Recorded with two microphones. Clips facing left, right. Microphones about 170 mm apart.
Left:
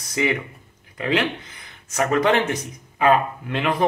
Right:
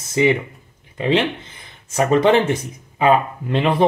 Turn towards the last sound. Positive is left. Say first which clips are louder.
# right 4 dB
turn(degrees=-30)  # may be behind; listen again after turning